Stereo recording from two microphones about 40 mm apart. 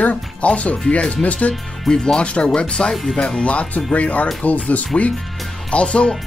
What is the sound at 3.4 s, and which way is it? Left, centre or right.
Speech, left.